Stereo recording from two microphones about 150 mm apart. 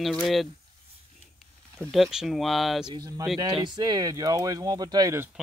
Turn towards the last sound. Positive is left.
turn(degrees=-20)  # may be behind; listen again after turning